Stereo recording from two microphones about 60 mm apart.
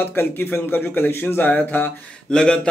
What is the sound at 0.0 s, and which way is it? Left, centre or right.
Speech, left.